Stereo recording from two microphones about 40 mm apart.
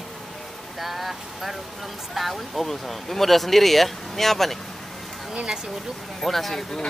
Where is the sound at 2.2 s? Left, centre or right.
Centre.